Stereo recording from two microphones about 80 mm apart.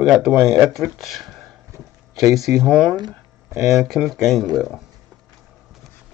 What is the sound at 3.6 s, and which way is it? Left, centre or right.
Speech, centre.